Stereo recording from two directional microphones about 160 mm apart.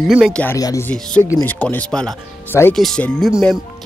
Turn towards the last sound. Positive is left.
turn(degrees=0)  # may be behind; listen again after turning